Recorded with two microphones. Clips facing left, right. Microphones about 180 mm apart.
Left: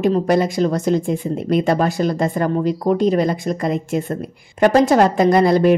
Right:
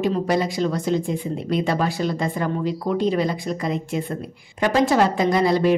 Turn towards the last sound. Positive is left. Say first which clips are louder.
# left 5 dB
turn(degrees=55)  # may be behind; listen again after turning